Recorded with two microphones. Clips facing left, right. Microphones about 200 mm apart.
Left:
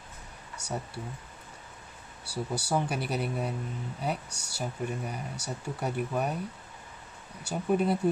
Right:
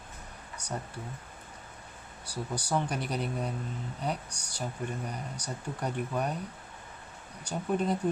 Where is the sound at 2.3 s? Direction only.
10° left (ahead or behind).